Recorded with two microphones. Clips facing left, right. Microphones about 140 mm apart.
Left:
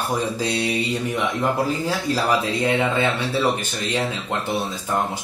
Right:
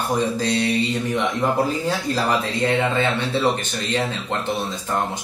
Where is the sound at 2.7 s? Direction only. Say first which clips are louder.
Right 1 dB; 15° left (ahead or behind).